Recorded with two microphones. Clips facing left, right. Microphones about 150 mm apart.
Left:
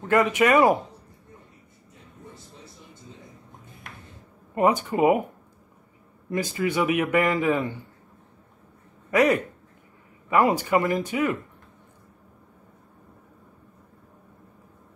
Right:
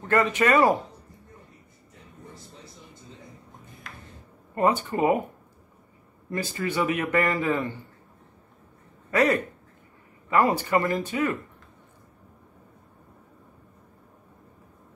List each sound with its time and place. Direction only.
0.1 s speech: 15° left (ahead or behind)
4.6 s speech: 15° left (ahead or behind)
6.3 s speech: 15° left (ahead or behind)
9.1 s speech: 15° left (ahead or behind)